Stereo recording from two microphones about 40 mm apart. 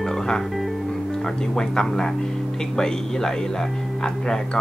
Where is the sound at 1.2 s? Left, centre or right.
Centre.